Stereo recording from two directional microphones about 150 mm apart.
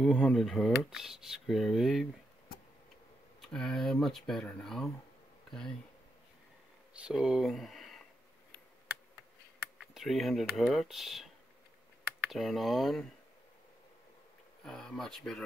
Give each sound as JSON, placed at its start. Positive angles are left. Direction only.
{"t": 0.0, "sound": "speech", "side_deg": 0}
{"t": 3.3, "sound": "speech", "side_deg": 5}
{"t": 7.0, "sound": "speech", "side_deg": -5}
{"t": 9.9, "sound": "speech", "side_deg": 0}
{"t": 12.3, "sound": "speech", "side_deg": 0}
{"t": 14.6, "sound": "speech", "side_deg": 5}